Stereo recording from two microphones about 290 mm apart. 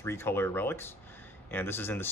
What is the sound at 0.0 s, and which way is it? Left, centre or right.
Speech, centre.